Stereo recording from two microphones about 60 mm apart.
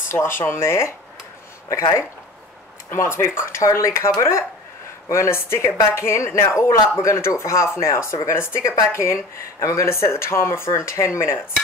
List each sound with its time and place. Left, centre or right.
0.1 s speech: left
1.7 s speech: left
2.9 s speech: left